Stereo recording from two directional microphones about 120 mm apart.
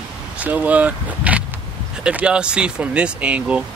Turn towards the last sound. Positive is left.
turn(degrees=-10)  # may be behind; listen again after turning